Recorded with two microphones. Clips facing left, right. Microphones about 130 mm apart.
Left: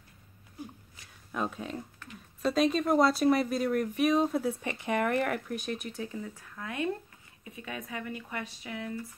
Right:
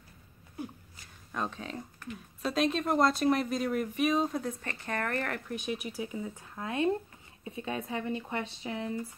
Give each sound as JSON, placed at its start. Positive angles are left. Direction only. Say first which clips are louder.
{"t": 1.3, "sound": "speech", "louder": "left 2 dB", "side_deg": 5}
{"t": 5.5, "sound": "speech", "louder": "even", "side_deg": 0}